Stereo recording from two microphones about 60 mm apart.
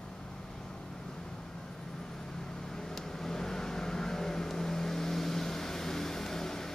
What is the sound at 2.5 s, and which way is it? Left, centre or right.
Vehicle, centre.